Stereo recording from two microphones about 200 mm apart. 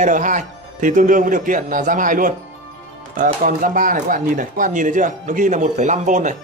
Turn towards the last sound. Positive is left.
turn(degrees=-40)  # may be behind; listen again after turning